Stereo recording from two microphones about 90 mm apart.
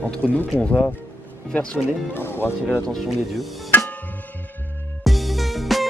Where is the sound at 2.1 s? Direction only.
25° left (ahead or behind).